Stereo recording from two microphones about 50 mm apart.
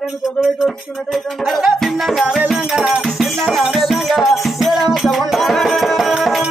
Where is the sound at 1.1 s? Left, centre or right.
Centre.